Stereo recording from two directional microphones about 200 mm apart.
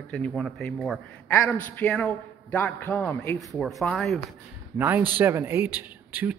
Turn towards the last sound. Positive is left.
turn(degrees=-10)  # may be behind; listen again after turning